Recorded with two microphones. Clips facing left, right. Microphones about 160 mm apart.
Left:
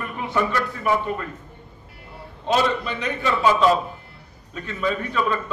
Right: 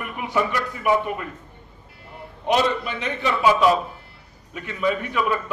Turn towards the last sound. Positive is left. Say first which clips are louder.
# even
turn(degrees=-10)  # may be behind; listen again after turning